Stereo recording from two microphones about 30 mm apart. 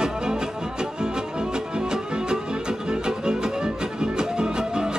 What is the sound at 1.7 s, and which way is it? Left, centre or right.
Music, right.